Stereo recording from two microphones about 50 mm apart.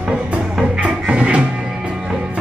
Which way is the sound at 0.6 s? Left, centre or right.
Right.